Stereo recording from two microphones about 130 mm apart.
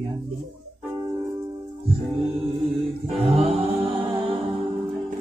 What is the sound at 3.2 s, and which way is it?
A capella, 50° right (ahead or behind).